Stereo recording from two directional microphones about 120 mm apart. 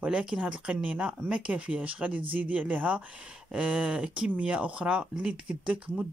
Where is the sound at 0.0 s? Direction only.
5° right (ahead or behind).